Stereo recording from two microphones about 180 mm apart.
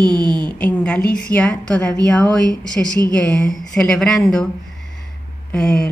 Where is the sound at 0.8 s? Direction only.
5° left (ahead or behind).